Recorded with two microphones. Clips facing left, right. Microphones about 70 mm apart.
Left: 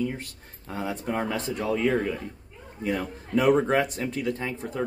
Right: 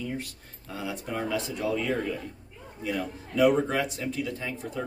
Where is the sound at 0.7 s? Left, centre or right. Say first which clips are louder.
Left 4 dB; left.